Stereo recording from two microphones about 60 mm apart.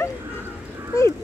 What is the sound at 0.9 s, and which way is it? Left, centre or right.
Speech, left.